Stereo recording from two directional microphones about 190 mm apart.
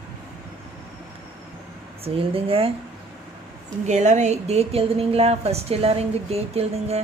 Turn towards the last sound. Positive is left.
turn(degrees=-35)  # may be behind; listen again after turning